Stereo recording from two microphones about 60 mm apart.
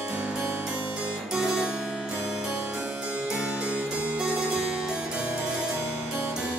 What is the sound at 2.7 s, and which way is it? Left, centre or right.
Harpsichord, right.